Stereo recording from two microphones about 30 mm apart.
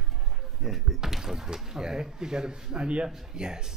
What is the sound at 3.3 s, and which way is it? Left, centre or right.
Speech, right.